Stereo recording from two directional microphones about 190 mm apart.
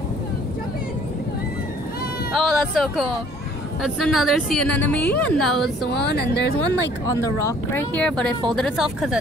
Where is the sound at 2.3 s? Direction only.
Centre (ahead or behind).